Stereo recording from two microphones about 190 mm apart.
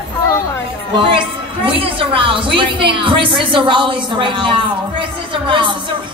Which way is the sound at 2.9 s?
25° right (ahead or behind).